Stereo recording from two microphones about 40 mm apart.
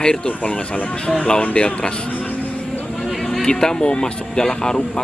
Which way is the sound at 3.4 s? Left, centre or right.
Centre.